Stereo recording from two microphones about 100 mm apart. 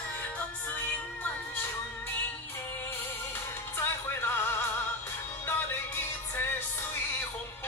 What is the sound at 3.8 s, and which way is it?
Music, 25° left (ahead or behind).